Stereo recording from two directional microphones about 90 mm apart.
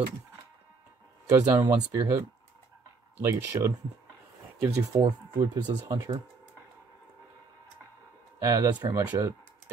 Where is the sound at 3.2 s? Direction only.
35° right (ahead or behind).